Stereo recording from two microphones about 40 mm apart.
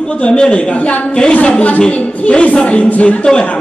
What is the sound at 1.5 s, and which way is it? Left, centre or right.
A man's voice, left.